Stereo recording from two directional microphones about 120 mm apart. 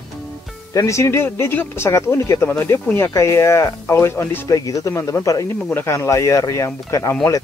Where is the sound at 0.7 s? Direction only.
25° left (ahead or behind).